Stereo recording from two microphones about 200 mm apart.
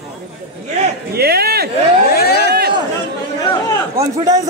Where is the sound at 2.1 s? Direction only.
50° left (ahead or behind).